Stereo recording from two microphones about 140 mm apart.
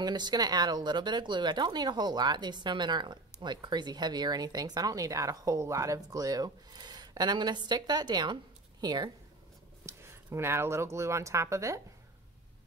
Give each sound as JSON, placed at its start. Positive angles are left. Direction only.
{"t": 0.0, "sound": "speech", "side_deg": -30}
{"t": 9.8, "sound": "speech", "side_deg": -20}